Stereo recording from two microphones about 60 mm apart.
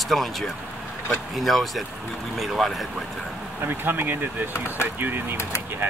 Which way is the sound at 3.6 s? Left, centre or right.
Right.